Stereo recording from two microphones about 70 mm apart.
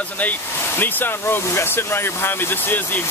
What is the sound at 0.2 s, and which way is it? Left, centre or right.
Speech, left.